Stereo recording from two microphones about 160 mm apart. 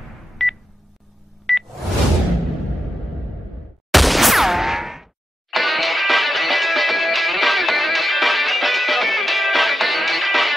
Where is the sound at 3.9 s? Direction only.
Centre (ahead or behind).